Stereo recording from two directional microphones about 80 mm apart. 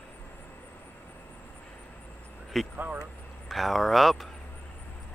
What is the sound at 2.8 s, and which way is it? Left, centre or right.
Vehicle, centre.